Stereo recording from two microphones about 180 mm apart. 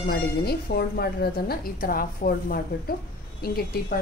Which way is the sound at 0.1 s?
60° left (ahead or behind).